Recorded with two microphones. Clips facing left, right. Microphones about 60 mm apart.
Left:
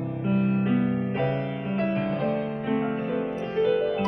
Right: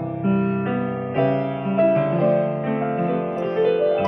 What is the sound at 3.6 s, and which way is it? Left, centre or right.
Music, centre.